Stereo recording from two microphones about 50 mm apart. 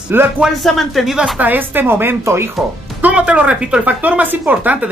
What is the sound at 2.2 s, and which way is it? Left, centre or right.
Speech, right.